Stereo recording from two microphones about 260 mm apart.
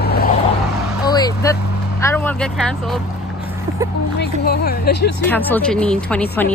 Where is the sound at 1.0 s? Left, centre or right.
Centre.